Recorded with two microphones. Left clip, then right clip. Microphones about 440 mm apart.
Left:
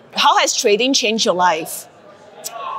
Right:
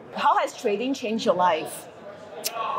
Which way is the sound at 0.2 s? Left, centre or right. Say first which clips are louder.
Left 8 dB; left.